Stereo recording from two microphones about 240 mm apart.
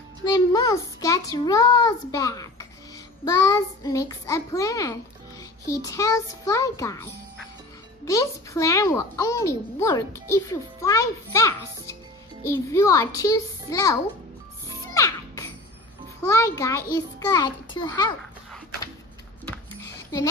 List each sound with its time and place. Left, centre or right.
0.2 s a child's voice: centre
15.0 s music: centre
16.3 s a child's voice: centre